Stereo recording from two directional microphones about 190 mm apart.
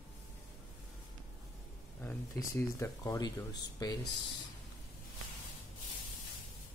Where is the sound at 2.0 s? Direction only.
15° left (ahead or behind).